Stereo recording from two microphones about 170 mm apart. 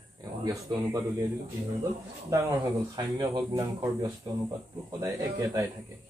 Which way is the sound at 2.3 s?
20° right (ahead or behind).